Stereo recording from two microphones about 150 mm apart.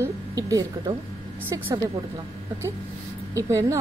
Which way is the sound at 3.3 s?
20° right (ahead or behind).